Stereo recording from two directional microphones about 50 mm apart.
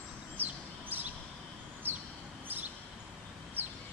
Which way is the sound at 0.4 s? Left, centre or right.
Right.